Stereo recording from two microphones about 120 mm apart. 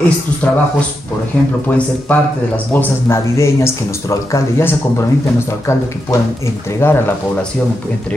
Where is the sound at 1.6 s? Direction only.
15° left (ahead or behind).